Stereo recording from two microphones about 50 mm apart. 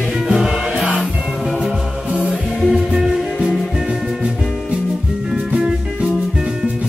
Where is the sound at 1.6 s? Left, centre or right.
Centre.